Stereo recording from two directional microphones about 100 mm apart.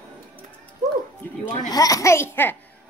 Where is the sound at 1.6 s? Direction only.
40° left (ahead or behind); by 2.5 s 20° left (ahead or behind).